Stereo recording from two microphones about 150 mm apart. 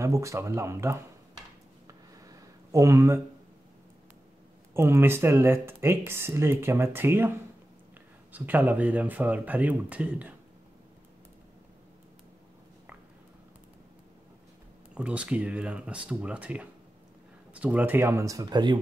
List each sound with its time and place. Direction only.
0.0 s speech: 20° right (ahead or behind)
1.9 s a sound: 25° right (ahead or behind)
4.7 s speech: 15° right (ahead or behind)
15.0 s speech: 10° right (ahead or behind); by 18.8 s 30° right (ahead or behind)